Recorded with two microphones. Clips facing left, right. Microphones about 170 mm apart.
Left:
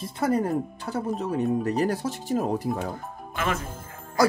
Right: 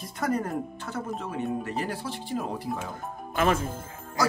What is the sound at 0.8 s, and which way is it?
Speech, 35° left (ahead or behind).